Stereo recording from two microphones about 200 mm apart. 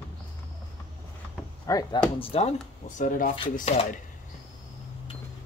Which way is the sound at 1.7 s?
15° left (ahead or behind).